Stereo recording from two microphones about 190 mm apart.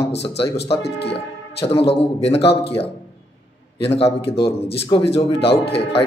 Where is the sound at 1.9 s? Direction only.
30° left (ahead or behind).